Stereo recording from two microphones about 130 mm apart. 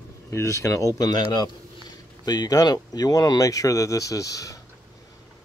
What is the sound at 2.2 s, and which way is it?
Speech, 30° left (ahead or behind).